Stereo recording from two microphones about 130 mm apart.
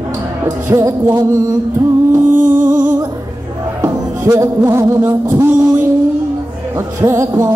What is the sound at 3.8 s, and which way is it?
Music, 25° right (ahead or behind).